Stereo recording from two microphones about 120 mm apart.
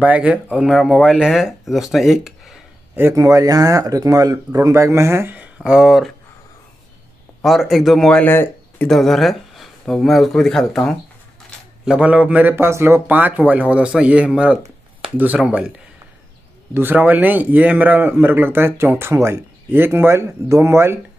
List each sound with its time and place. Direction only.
0.0 s speech: 10° right (ahead or behind)
3.0 s speech: 25° right (ahead or behind); by 6.1 s 5° right (ahead or behind)
7.4 s speech: centre (ahead or behind)
8.2 s speech: 15° left (ahead or behind)
8.8 s speech: centre (ahead or behind)
11.8 s speech: 10° right (ahead or behind)
16.7 s speech: 15° right (ahead or behind)